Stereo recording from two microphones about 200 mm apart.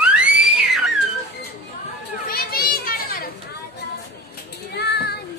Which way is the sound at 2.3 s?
50° left (ahead or behind).